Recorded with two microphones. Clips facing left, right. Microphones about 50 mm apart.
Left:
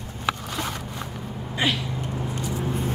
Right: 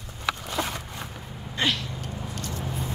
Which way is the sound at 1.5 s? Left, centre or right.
Centre.